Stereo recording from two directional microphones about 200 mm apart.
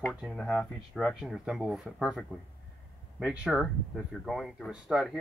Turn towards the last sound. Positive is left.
turn(degrees=0)  # may be behind; listen again after turning